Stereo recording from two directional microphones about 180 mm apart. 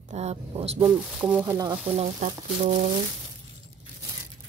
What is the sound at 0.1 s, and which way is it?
Speech, 35° right (ahead or behind).